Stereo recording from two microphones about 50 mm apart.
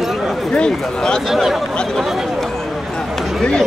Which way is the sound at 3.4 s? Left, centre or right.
Centre.